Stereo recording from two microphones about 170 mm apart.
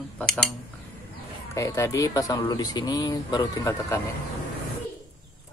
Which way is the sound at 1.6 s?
20° left (ahead or behind).